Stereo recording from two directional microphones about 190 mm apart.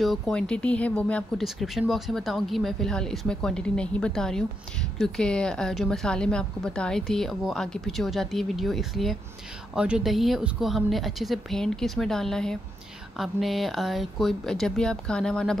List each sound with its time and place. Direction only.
0.0 s speech: centre (ahead or behind)